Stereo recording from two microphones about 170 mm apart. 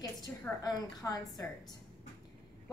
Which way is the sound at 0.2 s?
25° left (ahead or behind).